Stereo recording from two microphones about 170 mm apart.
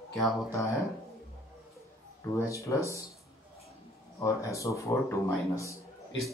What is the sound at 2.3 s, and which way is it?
Speech, 20° left (ahead or behind).